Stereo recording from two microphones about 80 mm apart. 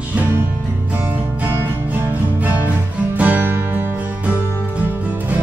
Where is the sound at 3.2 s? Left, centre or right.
Right.